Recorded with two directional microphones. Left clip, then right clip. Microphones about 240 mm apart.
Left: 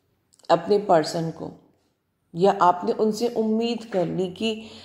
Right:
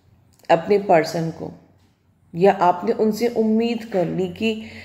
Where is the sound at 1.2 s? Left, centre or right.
Left.